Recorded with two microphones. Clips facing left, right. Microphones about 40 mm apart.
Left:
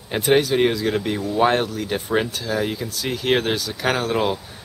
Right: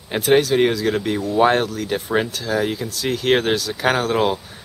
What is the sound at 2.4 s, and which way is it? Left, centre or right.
Speech, centre.